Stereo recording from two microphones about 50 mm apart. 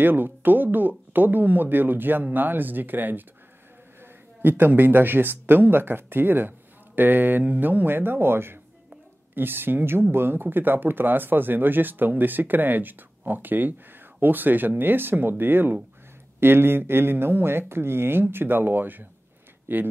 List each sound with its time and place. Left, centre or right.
0.0 s speech: right